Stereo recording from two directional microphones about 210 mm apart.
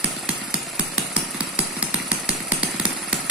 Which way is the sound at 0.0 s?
5° right (ahead or behind).